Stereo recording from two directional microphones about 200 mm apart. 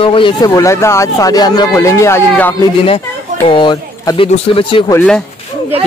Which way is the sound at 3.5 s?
25° left (ahead or behind).